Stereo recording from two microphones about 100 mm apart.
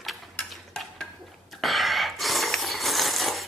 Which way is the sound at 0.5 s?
5° left (ahead or behind).